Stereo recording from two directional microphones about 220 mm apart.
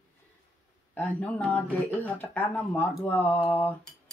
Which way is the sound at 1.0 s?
5° left (ahead or behind).